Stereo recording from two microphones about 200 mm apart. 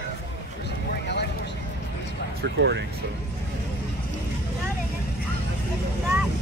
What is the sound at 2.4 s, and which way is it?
Speech, 60° right (ahead or behind).